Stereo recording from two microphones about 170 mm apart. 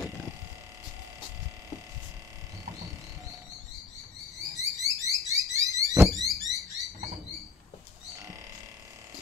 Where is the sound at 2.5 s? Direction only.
20° right (ahead or behind).